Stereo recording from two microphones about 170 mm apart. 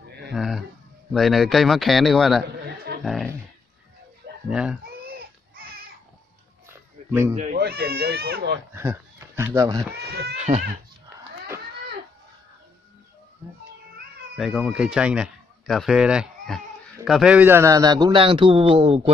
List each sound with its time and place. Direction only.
0.3 s a sound: centre (ahead or behind)
1.1 s a man's voice: centre (ahead or behind)
3.0 s a sound: centre (ahead or behind)
4.5 s a man's voice: 5° right (ahead or behind)
5.0 s baby cry: 60° right (ahead or behind)
6.7 s a sound: 15° right (ahead or behind)
7.5 s speech: 65° right (ahead or behind)
8.7 s speech: 15° right (ahead or behind)
10.3 s speech: 40° right (ahead or behind)
14.3 s a man's voice: centre (ahead or behind); by 19.1 s 30° right (ahead or behind)